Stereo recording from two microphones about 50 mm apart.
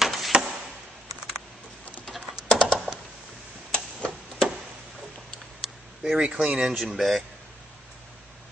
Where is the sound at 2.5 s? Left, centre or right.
Centre.